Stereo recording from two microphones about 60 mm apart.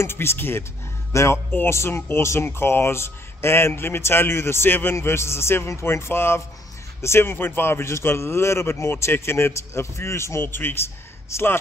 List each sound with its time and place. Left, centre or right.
0.0 s speech: left
1.1 s speech: left
4.9 s speech: left
10.4 s a man's voice: left